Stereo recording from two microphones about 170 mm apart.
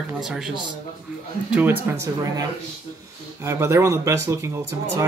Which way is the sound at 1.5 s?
10° right (ahead or behind).